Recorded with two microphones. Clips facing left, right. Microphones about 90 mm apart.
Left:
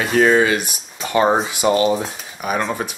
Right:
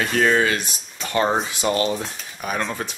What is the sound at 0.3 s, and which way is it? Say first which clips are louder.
Speech: left 4 dB; 15° left (ahead or behind).